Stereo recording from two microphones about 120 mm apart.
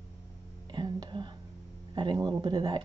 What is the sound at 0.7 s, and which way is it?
Whispering, 40° right (ahead or behind).